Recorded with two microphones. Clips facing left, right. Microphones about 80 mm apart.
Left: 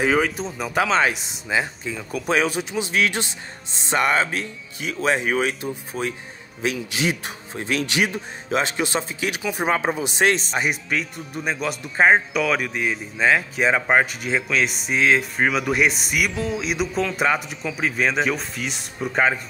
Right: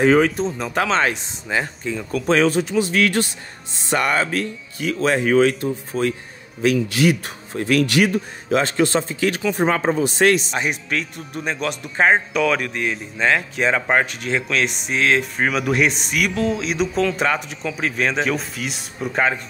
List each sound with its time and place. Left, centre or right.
0.0 s speech: centre
10.5 s speech: centre